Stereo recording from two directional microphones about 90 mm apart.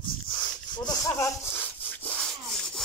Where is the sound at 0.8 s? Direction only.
40° left (ahead or behind).